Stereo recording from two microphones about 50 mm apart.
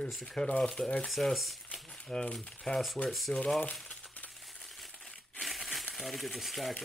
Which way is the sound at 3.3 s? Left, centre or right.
Centre.